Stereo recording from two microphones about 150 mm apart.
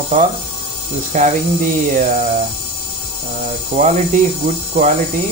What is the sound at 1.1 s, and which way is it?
Speech, 55° right (ahead or behind).